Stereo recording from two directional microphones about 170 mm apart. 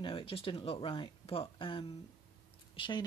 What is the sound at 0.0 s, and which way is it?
Speech, 35° left (ahead or behind).